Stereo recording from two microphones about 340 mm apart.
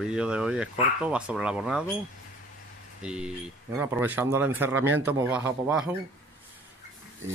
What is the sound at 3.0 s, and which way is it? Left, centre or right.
Speech, centre.